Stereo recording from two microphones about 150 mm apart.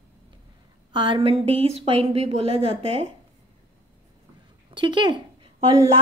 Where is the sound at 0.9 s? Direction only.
30° right (ahead or behind).